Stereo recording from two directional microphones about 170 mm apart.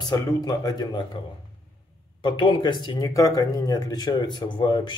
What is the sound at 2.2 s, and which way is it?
Speech, 25° left (ahead or behind).